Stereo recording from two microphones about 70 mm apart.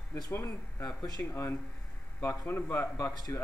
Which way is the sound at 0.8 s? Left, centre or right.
Left.